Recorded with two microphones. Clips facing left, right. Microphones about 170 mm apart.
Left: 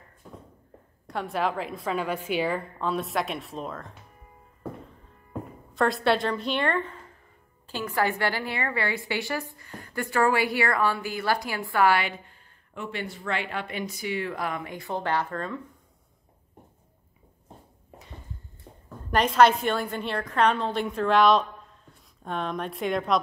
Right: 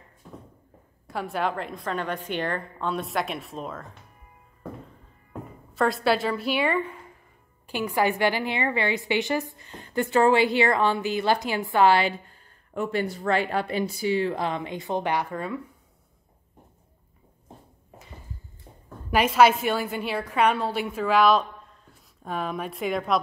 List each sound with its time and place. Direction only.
1.0 s a woman's voice: centre (ahead or behind)
5.8 s a woman's voice: centre (ahead or behind)
17.9 s a sound: centre (ahead or behind)
19.0 s a woman's voice: 5° right (ahead or behind)